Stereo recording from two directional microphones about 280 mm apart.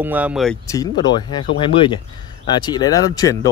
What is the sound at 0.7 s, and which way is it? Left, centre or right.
Speech, centre.